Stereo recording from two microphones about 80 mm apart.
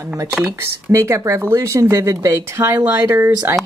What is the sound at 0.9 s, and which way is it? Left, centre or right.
Speech, right.